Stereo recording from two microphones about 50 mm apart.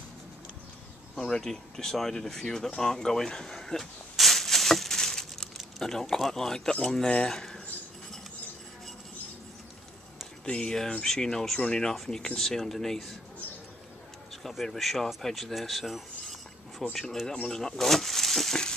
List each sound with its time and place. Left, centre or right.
1.1 s speech: centre
10.4 s speech: left
14.5 s speech: centre